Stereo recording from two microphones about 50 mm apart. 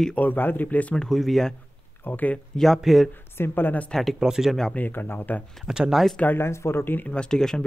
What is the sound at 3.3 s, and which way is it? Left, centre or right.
Speech, left.